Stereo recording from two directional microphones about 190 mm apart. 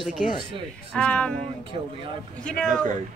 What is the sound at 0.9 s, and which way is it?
A woman's voice, 5° left (ahead or behind).